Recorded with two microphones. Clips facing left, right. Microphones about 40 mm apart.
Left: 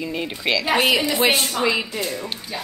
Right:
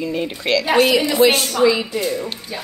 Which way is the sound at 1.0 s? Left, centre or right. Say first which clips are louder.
Right 4 dB; left.